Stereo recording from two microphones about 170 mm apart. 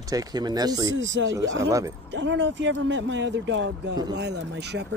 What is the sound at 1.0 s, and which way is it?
Speech, 90° right.